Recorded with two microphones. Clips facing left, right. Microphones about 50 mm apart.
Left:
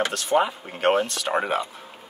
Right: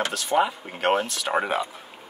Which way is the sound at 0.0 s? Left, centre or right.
Centre.